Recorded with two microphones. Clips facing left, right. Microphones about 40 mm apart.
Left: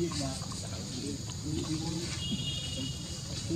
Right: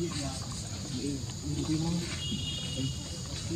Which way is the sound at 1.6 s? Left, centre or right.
Centre.